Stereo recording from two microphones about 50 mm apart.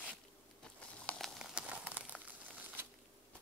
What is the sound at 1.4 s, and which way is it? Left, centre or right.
Crumpling, right.